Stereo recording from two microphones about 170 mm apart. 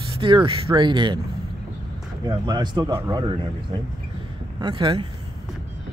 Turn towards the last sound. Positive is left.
turn(degrees=-30)  # may be behind; listen again after turning